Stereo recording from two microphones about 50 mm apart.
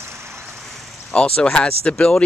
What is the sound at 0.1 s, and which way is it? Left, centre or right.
Vehicle, right.